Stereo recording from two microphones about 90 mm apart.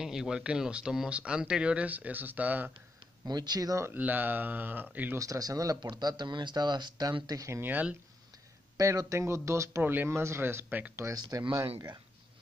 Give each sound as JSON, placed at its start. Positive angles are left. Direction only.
{"t": 0.0, "sound": "speech", "side_deg": -5}
{"t": 3.3, "sound": "speech", "side_deg": -45}
{"t": 3.8, "sound": "speech", "side_deg": -20}
{"t": 5.1, "sound": "speech", "side_deg": -40}
{"t": 5.9, "sound": "speech", "side_deg": -50}
{"t": 7.2, "sound": "speech", "side_deg": -35}
{"t": 8.7, "sound": "speech", "side_deg": -40}
{"t": 11.1, "sound": "speech", "side_deg": -40}